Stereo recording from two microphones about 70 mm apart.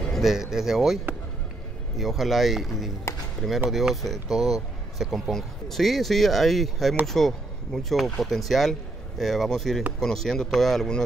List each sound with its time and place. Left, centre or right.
0.1 s speech: centre